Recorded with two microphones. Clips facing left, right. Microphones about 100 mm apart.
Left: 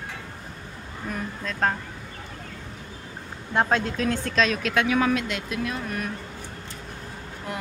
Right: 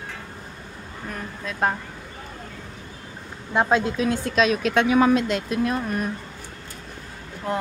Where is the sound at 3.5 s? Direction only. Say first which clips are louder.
Right 3 dB; 10° right (ahead or behind); by 6.1 s 40° right (ahead or behind).